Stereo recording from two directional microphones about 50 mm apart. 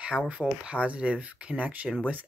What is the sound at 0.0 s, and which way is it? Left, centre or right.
Speech, right.